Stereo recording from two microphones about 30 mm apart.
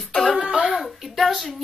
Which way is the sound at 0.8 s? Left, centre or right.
Centre.